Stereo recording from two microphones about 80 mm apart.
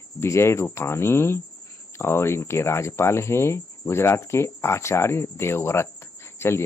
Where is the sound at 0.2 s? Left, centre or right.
Left.